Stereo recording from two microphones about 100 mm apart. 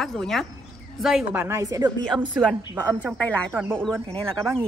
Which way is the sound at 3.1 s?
10° right (ahead or behind).